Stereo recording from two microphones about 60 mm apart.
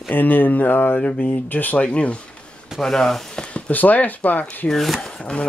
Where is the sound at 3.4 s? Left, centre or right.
Left.